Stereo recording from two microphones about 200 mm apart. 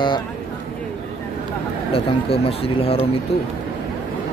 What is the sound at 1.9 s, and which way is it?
Speech, 30° left (ahead or behind).